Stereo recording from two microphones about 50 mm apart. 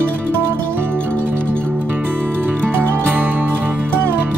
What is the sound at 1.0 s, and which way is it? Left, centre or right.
Music, left.